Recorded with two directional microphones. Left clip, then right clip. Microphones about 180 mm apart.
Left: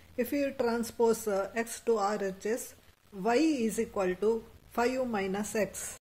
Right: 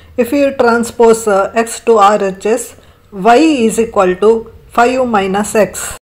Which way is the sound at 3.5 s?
15° left (ahead or behind).